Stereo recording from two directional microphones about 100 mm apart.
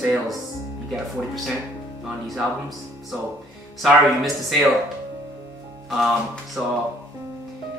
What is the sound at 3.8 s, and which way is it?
Speech, centre (ahead or behind).